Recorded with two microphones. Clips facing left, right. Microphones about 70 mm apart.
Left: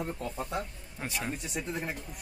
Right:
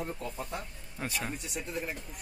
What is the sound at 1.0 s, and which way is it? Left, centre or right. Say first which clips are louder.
Speech: even; centre.